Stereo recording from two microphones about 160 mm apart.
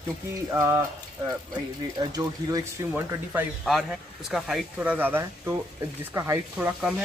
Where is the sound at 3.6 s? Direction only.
Centre (ahead or behind).